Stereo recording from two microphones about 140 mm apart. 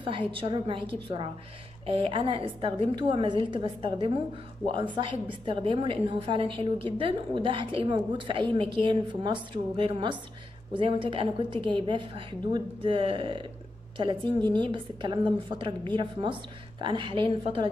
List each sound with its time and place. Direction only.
0.3 s a woman's voice: 40° right (ahead or behind)